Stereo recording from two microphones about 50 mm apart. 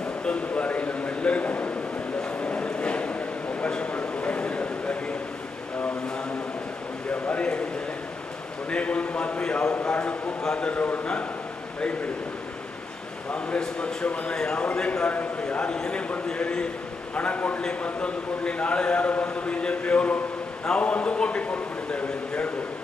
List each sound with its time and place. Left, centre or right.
0.2 s a sound: left
7.1 s a sound: left
8.6 s a man's voice: left
10.7 s a man's voice: left
13.3 s a man's voice: left
17.1 s a man's voice: left
17.6 s a man's voice: centre